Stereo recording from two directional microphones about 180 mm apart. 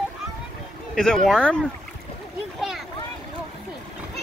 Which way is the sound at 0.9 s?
5° left (ahead or behind).